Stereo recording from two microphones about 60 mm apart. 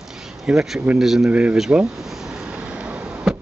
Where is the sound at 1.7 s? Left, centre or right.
Right.